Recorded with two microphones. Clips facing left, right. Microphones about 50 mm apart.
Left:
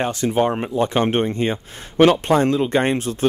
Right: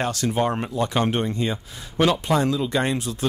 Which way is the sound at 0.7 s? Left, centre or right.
Left.